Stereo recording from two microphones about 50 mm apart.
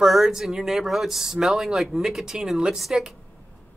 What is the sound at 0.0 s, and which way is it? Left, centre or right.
Speech, centre.